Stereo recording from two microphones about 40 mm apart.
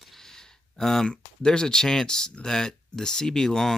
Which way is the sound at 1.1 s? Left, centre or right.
Centre.